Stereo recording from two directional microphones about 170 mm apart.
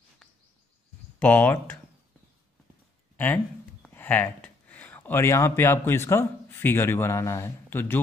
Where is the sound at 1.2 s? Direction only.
10° left (ahead or behind).